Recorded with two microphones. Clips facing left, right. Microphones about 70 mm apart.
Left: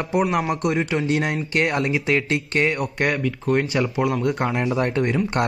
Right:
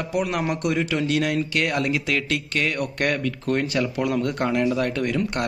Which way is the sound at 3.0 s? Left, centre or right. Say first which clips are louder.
Left 1 dB; centre.